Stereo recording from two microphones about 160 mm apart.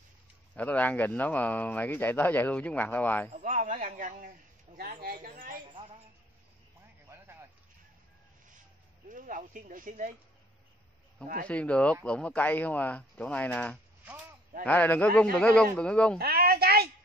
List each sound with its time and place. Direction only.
0.6 s speech: 10° left (ahead or behind)
3.4 s a man's voice: 55° right (ahead or behind)
4.7 s speech: 65° right (ahead or behind)
9.1 s speech: 55° right (ahead or behind)
11.4 s speech: 10° left (ahead or behind)
16.2 s a woman's voice: 70° right (ahead or behind)